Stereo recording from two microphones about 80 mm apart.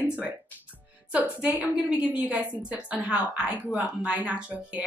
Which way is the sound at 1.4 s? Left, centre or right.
Right.